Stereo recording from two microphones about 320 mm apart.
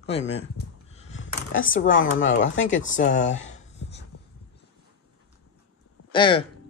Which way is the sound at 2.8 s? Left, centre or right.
Left.